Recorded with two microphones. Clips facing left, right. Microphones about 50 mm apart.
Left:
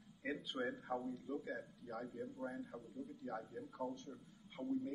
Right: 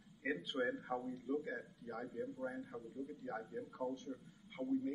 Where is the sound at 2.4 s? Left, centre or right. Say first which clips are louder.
Right 2 dB; centre.